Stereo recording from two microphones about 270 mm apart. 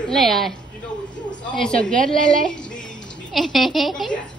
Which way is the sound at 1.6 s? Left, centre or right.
Centre.